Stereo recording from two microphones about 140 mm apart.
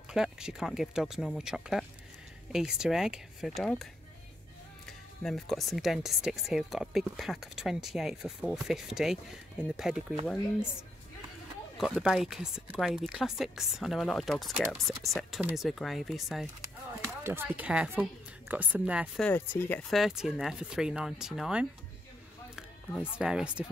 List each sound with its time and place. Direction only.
0.1 s speech: 5° right (ahead or behind)
11.8 s speech: 5° right (ahead or behind)
17.2 s speech: 15° right (ahead or behind)
19.1 s speech: 10° left (ahead or behind)
19.9 s speech: centre (ahead or behind)